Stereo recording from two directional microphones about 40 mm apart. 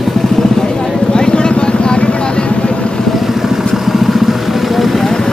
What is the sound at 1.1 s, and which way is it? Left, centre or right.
Vehicle, left.